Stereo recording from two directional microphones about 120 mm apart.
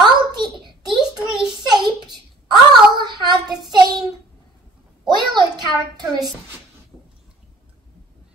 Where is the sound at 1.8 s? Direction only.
35° right (ahead or behind).